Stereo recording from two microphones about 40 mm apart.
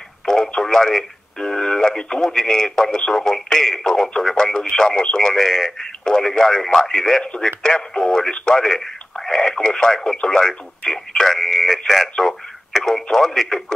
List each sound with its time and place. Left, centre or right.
0.2 s radio: centre
0.7 s speech: centre
11.3 s speech: centre